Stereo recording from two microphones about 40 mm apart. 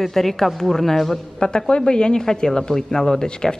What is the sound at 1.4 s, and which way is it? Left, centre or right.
Speech, left.